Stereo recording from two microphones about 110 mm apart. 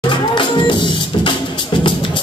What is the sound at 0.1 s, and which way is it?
Music, 45° left (ahead or behind).